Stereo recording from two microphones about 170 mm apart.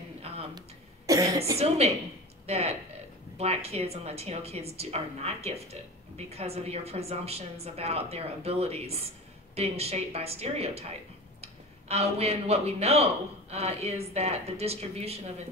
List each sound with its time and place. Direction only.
0.6 s cough: 20° right (ahead or behind)
2.4 s a woman's voice: 40° right (ahead or behind)